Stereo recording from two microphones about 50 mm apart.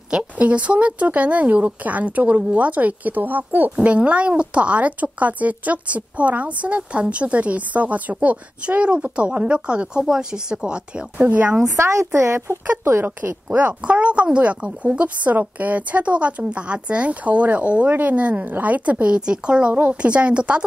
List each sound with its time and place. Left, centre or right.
0.4 s speech: right
3.7 s speech: right
11.2 s speech: right
11.6 s a woman's voice: right
13.5 s speech: right
13.8 s speech: right